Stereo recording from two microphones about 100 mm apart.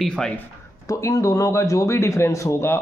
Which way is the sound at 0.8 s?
35° left (ahead or behind).